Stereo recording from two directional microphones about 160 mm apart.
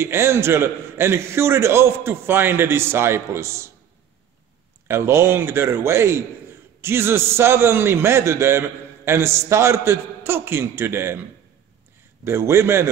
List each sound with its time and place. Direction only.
0.0 s a man's voice: 15° right (ahead or behind)
4.8 s a man's voice: 15° right (ahead or behind)
12.3 s a man's voice: 15° right (ahead or behind)